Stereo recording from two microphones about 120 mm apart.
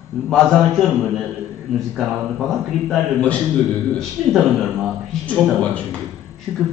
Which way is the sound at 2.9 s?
10° left (ahead or behind).